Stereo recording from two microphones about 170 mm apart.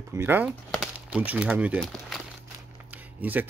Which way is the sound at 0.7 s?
5° right (ahead or behind).